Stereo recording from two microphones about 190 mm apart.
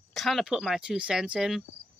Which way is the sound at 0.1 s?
Centre (ahead or behind).